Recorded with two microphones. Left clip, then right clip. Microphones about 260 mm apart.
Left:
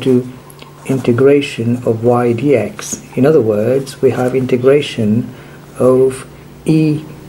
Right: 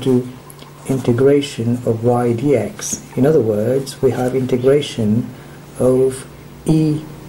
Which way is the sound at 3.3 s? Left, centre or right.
Centre.